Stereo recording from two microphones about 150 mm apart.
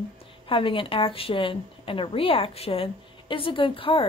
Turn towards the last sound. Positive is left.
turn(degrees=35)  # may be behind; listen again after turning